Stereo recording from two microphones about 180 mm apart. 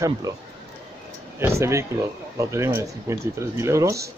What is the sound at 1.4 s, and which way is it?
Speech, 15° right (ahead or behind).